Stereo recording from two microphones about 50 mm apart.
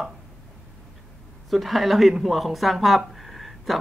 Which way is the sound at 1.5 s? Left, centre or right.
Centre.